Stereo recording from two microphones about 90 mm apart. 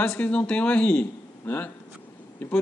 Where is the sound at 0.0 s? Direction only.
15° left (ahead or behind).